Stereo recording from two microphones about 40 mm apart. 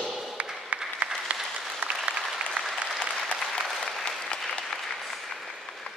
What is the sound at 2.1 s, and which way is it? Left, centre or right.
Applause, right.